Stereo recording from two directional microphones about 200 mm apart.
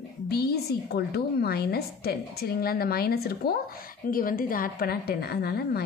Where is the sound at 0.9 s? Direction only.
55° left (ahead or behind).